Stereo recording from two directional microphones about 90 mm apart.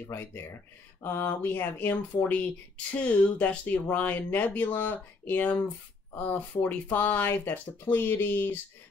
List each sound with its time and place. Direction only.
0.0 s speech: 25° left (ahead or behind)